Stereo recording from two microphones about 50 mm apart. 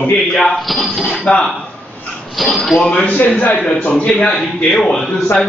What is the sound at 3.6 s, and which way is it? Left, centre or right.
A man's voice, centre.